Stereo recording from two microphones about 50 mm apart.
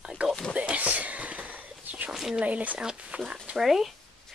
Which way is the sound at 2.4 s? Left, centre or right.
Right.